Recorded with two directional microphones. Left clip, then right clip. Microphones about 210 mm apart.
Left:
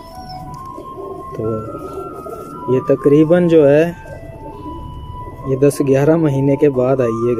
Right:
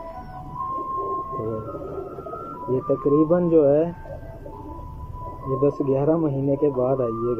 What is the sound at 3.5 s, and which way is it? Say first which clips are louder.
Speech: left 7 dB; 60° left (ahead or behind).